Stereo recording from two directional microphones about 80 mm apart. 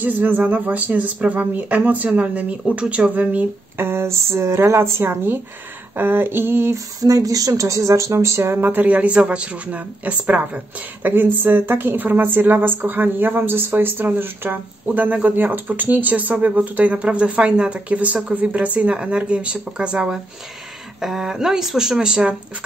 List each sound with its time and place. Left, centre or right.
0.0 s speech: right
7.0 s speech: right; by 22.3 s centre